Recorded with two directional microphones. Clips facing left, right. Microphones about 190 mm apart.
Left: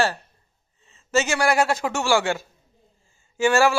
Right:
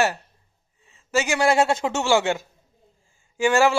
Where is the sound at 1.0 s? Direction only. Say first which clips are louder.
Right 1 dB; 15° right (ahead or behind).